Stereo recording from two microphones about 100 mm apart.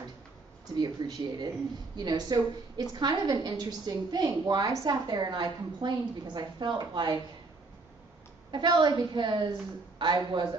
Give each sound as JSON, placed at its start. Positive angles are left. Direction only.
{"t": 0.7, "sound": "a woman's voice", "side_deg": -45}
{"t": 8.5, "sound": "a woman's voice", "side_deg": -50}